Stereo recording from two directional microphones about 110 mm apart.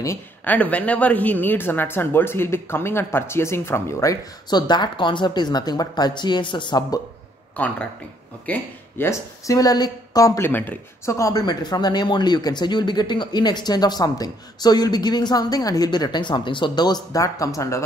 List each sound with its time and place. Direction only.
0.4 s speech: 15° left (ahead or behind); by 7.0 s 45° left (ahead or behind)
7.5 s a woman's voice: 15° left (ahead or behind)